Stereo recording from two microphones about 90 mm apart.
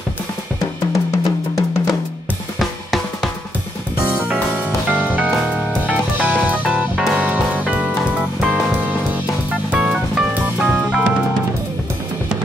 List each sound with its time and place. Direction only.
0.9 s music: 35° left (ahead or behind)
2.6 s drum kit: centre (ahead or behind)
4.0 s music: 15° right (ahead or behind)